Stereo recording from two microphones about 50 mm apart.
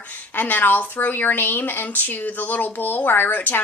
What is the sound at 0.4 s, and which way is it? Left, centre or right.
A woman's voice, left.